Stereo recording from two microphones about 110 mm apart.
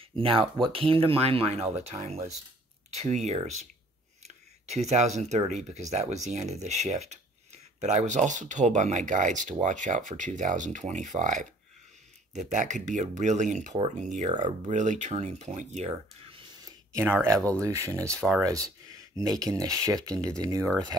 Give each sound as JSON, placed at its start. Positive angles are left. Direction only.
{"t": 0.0, "sound": "speech", "side_deg": -55}
{"t": 4.6, "sound": "speech", "side_deg": -90}
{"t": 13.7, "sound": "speech", "side_deg": -75}
{"t": 16.5, "sound": "a sound", "side_deg": -35}
{"t": 17.0, "sound": "speech", "side_deg": -20}